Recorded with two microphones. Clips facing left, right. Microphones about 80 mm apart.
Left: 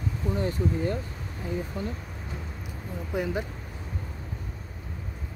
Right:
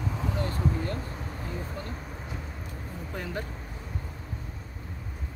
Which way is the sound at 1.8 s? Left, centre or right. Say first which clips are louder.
Left 5 dB; centre.